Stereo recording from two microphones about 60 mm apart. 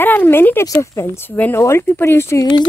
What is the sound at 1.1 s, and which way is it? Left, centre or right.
Speech, left.